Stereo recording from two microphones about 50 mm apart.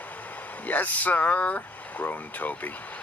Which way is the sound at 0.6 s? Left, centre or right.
Left.